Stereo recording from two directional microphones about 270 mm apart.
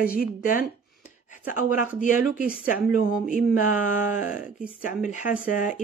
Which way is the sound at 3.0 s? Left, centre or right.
Left.